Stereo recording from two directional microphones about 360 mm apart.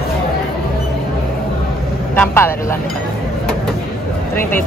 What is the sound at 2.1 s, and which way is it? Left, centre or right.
Speech, centre.